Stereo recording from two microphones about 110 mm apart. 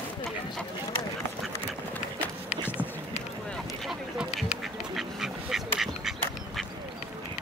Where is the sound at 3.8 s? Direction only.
Centre (ahead or behind).